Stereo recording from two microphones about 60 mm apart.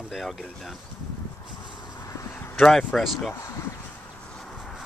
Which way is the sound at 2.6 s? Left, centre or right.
Centre.